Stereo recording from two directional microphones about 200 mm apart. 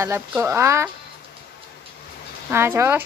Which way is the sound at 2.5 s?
10° right (ahead or behind).